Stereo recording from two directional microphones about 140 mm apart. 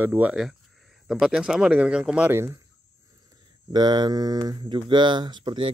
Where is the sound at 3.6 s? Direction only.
30° right (ahead or behind).